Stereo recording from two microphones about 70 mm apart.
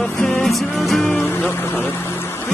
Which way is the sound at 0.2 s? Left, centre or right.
Centre.